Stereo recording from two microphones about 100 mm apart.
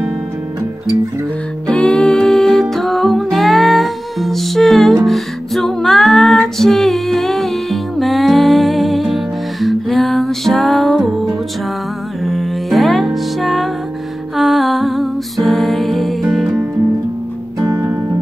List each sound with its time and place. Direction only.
1.7 s music: 10° left (ahead or behind)
17.6 s music: 35° right (ahead or behind)